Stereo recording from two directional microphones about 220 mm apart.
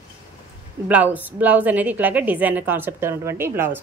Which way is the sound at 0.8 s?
5° right (ahead or behind).